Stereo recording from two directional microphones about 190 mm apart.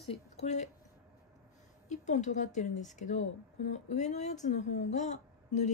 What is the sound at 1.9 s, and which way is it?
Speech, 40° left (ahead or behind).